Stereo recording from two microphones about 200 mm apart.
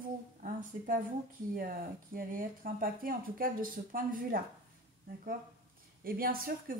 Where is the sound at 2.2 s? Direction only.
45° right (ahead or behind).